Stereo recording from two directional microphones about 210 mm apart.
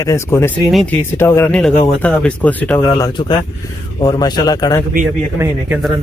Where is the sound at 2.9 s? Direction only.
20° left (ahead or behind).